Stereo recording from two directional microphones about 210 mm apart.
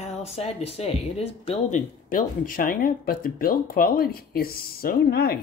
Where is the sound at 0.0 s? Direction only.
30° left (ahead or behind).